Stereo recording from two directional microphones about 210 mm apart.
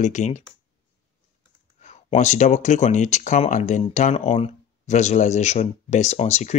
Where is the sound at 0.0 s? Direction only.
35° left (ahead or behind).